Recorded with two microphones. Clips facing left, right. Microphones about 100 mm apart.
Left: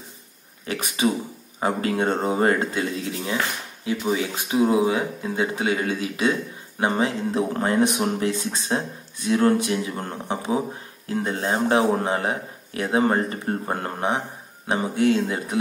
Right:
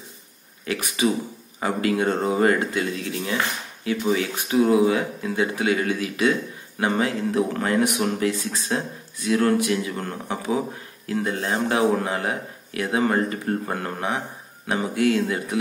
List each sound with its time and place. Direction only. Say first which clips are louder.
0.7 s speech: even; 25° left (ahead or behind)